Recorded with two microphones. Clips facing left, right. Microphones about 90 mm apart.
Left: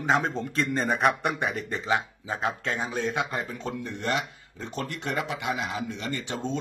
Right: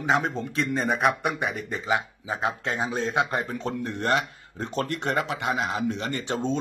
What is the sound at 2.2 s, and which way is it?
Speech, 15° right (ahead or behind).